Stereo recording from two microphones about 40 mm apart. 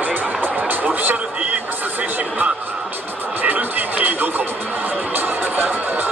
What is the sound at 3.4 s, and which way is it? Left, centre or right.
Music, right.